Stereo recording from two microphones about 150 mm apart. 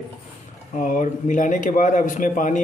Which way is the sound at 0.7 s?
60° left (ahead or behind).